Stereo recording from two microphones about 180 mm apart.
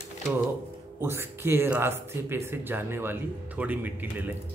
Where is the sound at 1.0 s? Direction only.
15° right (ahead or behind).